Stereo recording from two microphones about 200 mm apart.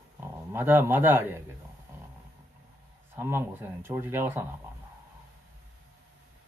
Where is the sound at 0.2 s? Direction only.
10° right (ahead or behind).